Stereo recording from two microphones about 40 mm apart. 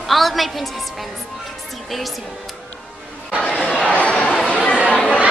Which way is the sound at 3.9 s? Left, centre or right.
Left.